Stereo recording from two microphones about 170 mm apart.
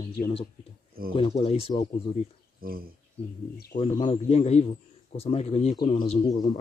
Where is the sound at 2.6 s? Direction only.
60° right (ahead or behind).